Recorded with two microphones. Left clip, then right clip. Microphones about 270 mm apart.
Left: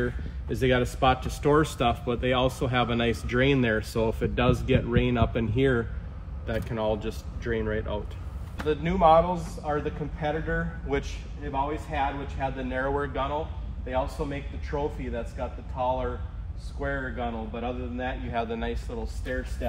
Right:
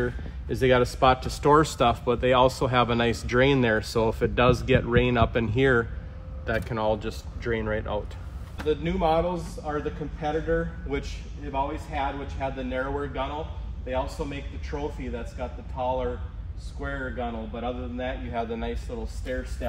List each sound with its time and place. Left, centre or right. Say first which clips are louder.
0.0 s speech: right 1 dB; right
8.5 s a man's voice: left 1 dB; centre